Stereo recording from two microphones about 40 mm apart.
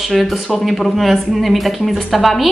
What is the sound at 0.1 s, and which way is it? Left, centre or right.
Speech, centre.